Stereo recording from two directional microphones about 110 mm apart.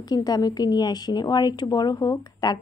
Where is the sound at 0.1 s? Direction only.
35° left (ahead or behind).